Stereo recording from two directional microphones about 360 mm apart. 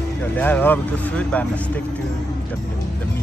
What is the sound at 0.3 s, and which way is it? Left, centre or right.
A man's voice, centre.